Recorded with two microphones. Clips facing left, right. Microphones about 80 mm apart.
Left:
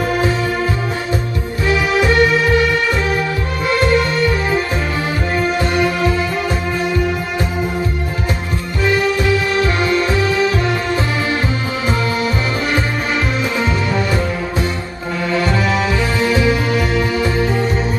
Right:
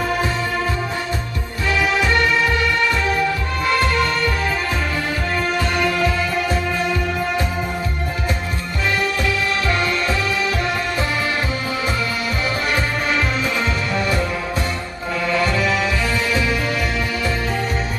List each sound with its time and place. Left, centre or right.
1.7 s music: centre
3.6 s music: centre
5.8 s music: centre
16.3 s music: centre